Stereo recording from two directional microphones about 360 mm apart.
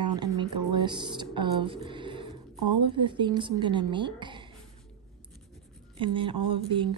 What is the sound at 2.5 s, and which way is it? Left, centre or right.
Speech, right.